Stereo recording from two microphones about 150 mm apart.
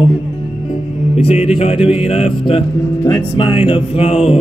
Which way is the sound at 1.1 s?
45° left (ahead or behind).